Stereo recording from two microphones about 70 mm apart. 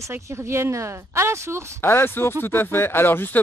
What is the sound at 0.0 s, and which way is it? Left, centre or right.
Speech, right.